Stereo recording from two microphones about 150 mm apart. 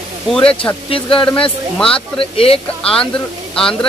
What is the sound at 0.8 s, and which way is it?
Speech, 35° left (ahead or behind).